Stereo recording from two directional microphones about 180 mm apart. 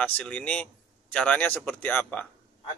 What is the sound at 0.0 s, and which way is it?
Speech, 5° left (ahead or behind).